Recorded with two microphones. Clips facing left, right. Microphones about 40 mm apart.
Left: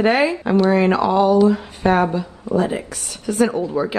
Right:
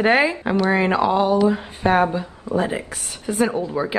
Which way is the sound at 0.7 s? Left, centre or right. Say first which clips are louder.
Left 2 dB; centre.